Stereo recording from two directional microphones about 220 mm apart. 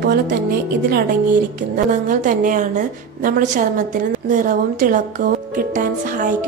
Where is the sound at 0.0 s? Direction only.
45° right (ahead or behind).